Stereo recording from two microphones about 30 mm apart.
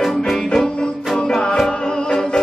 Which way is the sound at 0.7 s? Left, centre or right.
Left.